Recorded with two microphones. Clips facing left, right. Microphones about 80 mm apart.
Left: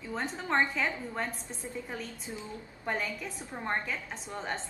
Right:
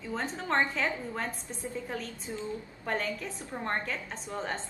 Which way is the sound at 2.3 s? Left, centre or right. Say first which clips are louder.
Right 5 dB; centre.